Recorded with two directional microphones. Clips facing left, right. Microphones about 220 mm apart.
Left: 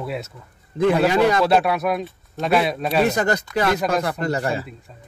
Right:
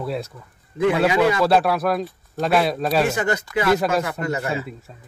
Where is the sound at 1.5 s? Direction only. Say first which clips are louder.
Even; centre (ahead or behind).